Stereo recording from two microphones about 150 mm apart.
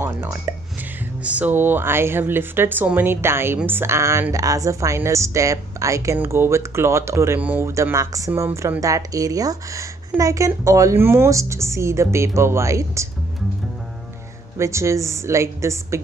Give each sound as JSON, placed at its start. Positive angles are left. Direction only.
{"t": 0.0, "sound": "speech", "side_deg": -15}
{"t": 14.6, "sound": "speech", "side_deg": -20}